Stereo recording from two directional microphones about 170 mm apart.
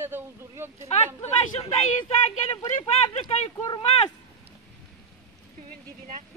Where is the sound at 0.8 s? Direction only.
35° left (ahead or behind).